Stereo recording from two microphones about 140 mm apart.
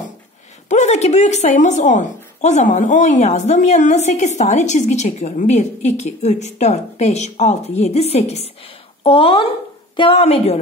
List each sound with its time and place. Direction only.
0.7 s a woman's voice: 55° left (ahead or behind)